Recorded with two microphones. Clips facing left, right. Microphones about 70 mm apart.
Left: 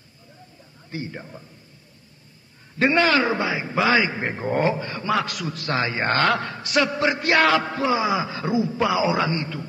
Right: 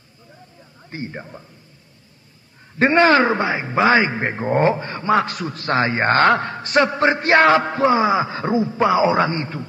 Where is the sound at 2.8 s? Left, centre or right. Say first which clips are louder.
Right 5 dB; right.